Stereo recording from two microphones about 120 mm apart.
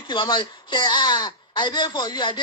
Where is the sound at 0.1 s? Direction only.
40° left (ahead or behind).